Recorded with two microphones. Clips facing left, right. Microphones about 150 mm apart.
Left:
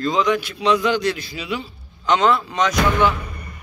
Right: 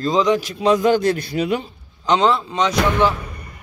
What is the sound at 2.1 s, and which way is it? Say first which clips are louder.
Speech: right 1 dB; 30° right (ahead or behind).